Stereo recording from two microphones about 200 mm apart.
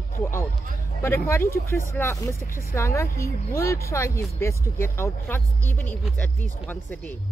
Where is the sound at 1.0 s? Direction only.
10° left (ahead or behind).